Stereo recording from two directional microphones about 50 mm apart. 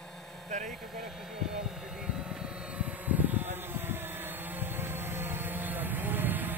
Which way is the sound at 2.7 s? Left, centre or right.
Right.